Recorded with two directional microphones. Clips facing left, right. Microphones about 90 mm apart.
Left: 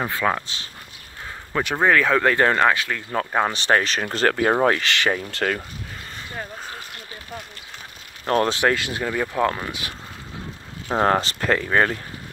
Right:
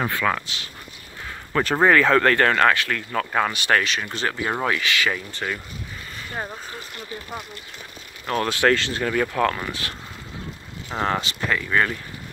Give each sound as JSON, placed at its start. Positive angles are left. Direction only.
{"t": 0.2, "sound": "speech", "side_deg": 25}
{"t": 1.5, "sound": "speech", "side_deg": 10}
{"t": 8.5, "sound": "speech", "side_deg": 15}
{"t": 10.9, "sound": "speech", "side_deg": 40}